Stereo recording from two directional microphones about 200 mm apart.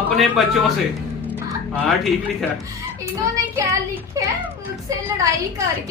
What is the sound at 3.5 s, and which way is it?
Speech, 15° right (ahead or behind).